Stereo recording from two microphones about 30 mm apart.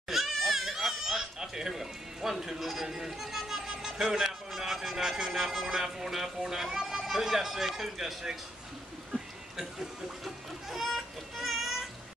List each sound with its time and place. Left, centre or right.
0.1 s goat: centre
3.0 s chatter: centre
4.5 s music: centre
4.9 s speech: centre
5.7 s speech: centre
7.1 s speech: centre
9.1 s a sound: centre
10.2 s a sound: centre
11.6 s a sound: centre